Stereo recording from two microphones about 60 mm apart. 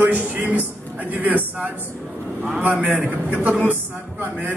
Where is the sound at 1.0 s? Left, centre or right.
Right.